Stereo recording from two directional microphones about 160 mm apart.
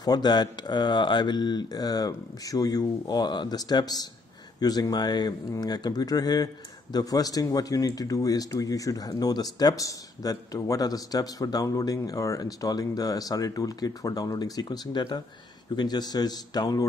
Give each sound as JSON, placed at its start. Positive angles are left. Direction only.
{"t": 0.0, "sound": "speech", "side_deg": 25}